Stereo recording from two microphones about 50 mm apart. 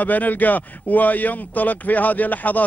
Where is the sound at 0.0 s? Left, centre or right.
Left.